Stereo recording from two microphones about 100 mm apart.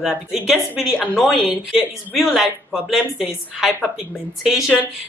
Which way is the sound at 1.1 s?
5° right (ahead or behind).